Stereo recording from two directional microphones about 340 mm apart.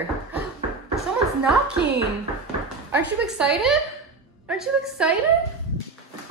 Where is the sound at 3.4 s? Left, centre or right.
Centre.